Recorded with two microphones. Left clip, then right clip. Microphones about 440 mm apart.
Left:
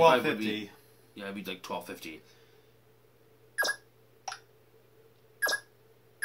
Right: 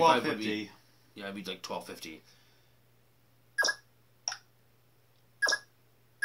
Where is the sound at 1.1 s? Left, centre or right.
Centre.